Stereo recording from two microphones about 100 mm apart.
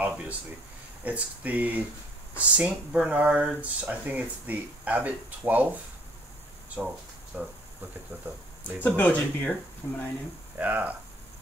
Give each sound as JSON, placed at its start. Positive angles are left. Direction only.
{"t": 0.0, "sound": "a sound", "side_deg": -10}
{"t": 1.0, "sound": "speech", "side_deg": -15}
{"t": 6.8, "sound": "speech", "side_deg": -25}
{"t": 7.3, "sound": "speech", "side_deg": -10}
{"t": 8.8, "sound": "speech", "side_deg": 15}
{"t": 10.6, "sound": "speech", "side_deg": -15}